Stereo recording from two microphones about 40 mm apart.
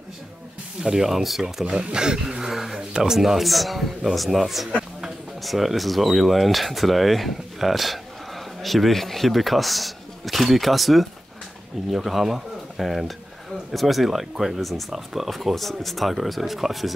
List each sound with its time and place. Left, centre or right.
0.8 s speech: centre
1.4 s speech: centre
2.5 s speech: centre